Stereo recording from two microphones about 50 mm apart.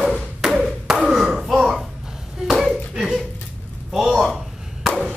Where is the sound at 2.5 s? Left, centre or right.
Centre.